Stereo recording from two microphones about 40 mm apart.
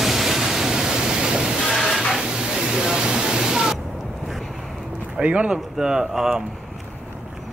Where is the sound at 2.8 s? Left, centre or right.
Centre.